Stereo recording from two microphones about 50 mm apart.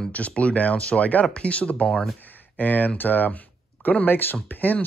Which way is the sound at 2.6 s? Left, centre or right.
Left.